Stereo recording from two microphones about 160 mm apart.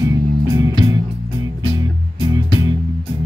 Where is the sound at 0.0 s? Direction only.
20° right (ahead or behind).